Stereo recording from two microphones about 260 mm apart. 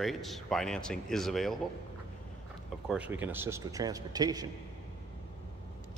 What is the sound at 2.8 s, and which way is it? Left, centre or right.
A man's voice, centre.